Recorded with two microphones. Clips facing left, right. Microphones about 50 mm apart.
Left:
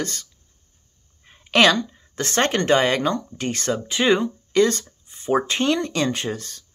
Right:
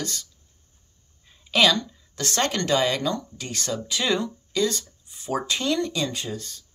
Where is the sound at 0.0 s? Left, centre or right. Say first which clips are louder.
Left 4 dB; left.